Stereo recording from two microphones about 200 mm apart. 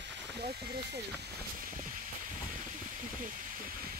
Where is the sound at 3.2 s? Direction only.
40° right (ahead or behind).